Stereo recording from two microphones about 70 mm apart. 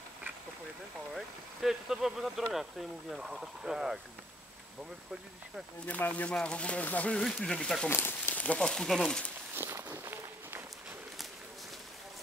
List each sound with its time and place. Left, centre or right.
1.1 s speech: centre
5.9 s speech: left
7.2 s speech: centre
7.9 s speech: left
8.5 s speech: centre
9.6 s walk: right